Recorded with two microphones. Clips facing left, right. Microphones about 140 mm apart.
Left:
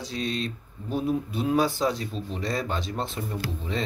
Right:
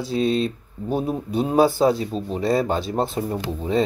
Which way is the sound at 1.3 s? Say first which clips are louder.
Right 9 dB; 30° right (ahead or behind).